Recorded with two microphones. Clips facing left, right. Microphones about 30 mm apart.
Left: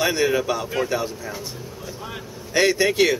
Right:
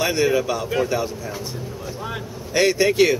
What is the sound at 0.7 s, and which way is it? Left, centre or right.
Vehicle, centre.